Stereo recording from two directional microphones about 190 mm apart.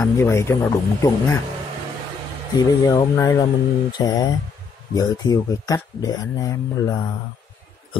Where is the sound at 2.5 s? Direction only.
20° left (ahead or behind).